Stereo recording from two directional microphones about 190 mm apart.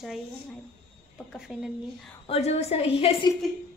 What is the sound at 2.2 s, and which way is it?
A woman's voice, 30° left (ahead or behind).